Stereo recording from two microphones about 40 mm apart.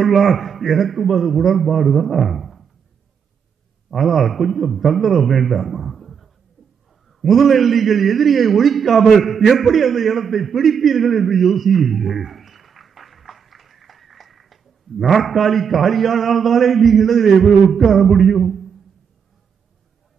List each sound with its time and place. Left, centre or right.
0.0 s a man's voice: centre
3.9 s a man's voice: centre